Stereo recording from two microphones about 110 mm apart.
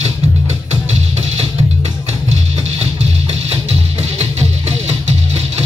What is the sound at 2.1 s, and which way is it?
Music, 60° right (ahead or behind).